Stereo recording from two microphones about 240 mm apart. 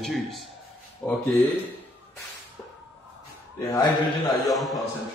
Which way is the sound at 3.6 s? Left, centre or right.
Centre.